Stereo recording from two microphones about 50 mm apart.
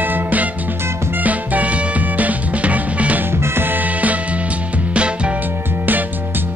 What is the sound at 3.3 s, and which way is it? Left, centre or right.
Music, right.